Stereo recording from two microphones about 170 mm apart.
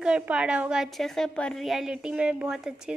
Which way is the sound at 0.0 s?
5° right (ahead or behind).